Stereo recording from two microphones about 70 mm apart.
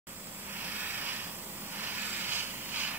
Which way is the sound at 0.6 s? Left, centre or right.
Right.